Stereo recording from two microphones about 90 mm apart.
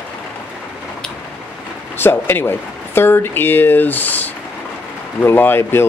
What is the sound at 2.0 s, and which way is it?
Speech, 25° left (ahead or behind).